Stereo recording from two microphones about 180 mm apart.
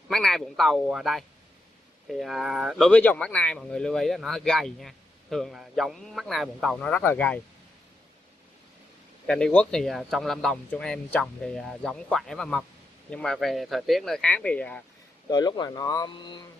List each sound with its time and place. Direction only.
0.1 s speech: centre (ahead or behind)
9.3 s speech: 5° left (ahead or behind)
15.2 s speech: 20° left (ahead or behind)